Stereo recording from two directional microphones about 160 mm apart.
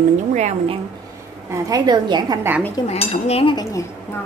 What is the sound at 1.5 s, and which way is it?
Speech, 25° right (ahead or behind).